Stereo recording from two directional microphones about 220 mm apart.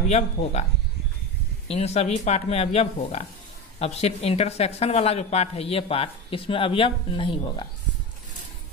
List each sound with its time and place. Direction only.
0.1 s speech: 30° left (ahead or behind)
1.7 s speech: 30° left (ahead or behind)